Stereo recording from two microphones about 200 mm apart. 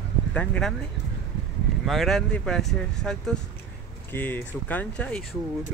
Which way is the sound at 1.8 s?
Centre (ahead or behind).